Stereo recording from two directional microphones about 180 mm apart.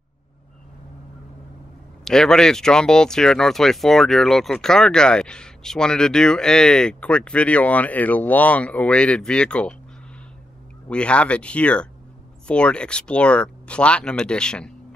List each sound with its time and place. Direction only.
2.0 s speech: 5° left (ahead or behind)
10.9 s speech: 5° left (ahead or behind)